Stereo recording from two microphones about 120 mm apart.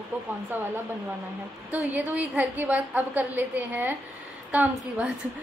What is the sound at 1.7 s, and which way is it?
A woman's voice, 10° right (ahead or behind).